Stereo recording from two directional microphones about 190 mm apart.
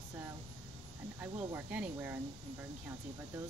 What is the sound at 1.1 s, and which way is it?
Speech, 10° right (ahead or behind).